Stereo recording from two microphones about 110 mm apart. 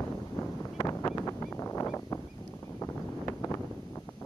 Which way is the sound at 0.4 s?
30° left (ahead or behind).